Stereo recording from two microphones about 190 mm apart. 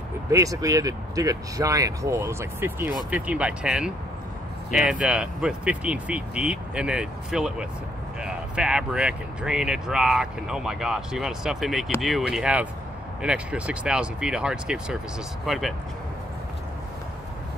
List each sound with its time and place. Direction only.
0.3 s speech: 15° right (ahead or behind); by 15.7 s centre (ahead or behind)